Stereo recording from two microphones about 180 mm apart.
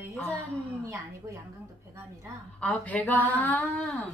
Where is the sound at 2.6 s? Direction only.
10° left (ahead or behind).